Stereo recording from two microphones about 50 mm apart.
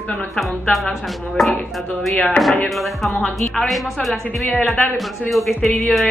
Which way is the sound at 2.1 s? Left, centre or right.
Left.